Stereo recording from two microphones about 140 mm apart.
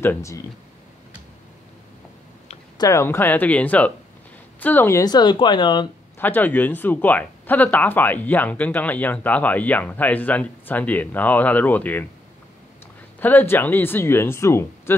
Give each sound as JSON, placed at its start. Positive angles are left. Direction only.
{"t": 0.0, "sound": "speech", "side_deg": 20}
{"t": 2.8, "sound": "speech", "side_deg": 20}
{"t": 5.0, "sound": "speech", "side_deg": 30}
{"t": 6.1, "sound": "speech", "side_deg": 15}
{"t": 13.2, "sound": "speech", "side_deg": 15}